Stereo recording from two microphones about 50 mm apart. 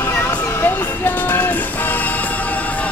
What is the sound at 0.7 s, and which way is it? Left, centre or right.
Music, left.